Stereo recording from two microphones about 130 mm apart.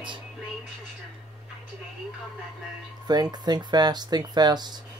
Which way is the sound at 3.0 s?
30° right (ahead or behind).